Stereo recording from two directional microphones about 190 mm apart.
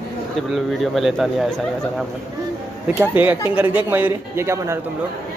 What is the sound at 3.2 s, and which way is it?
A man's voice, 10° right (ahead or behind).